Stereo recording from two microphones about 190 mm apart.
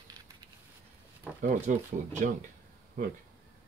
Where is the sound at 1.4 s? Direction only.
40° right (ahead or behind).